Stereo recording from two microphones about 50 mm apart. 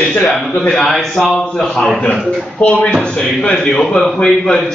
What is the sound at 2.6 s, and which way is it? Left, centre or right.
A man's voice, left.